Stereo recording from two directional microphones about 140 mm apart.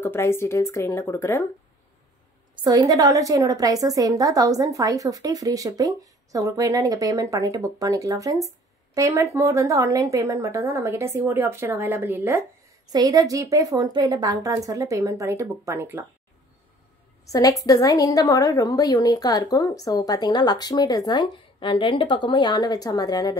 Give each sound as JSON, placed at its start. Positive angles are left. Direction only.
{"t": 0.0, "sound": "speech", "side_deg": 15}
{"t": 2.5, "sound": "a woman's voice", "side_deg": -30}
{"t": 12.9, "sound": "a woman's voice", "side_deg": -25}
{"t": 17.3, "sound": "a woman's voice", "side_deg": 25}